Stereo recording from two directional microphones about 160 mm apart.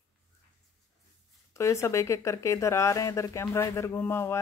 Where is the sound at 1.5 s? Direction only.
20° left (ahead or behind).